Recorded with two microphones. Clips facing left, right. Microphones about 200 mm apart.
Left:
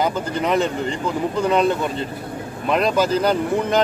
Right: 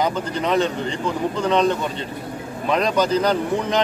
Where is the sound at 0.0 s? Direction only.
5° left (ahead or behind).